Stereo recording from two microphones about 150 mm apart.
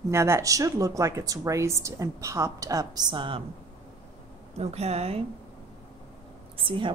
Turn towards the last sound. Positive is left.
turn(degrees=-35)  # may be behind; listen again after turning